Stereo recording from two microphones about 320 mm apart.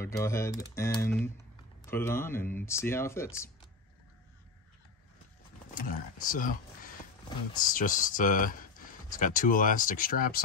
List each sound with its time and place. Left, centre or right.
0.0 s speech: centre
5.8 s speech: left